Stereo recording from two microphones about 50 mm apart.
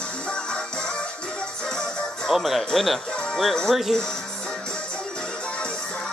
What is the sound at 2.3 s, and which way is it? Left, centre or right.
Speech, centre.